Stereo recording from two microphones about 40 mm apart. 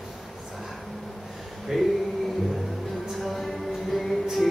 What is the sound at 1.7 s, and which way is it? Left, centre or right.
Speech, centre.